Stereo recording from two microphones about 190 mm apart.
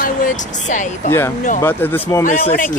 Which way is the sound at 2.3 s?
40° left (ahead or behind).